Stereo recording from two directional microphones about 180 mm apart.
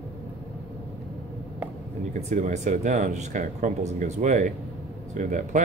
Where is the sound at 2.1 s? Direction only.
40° right (ahead or behind).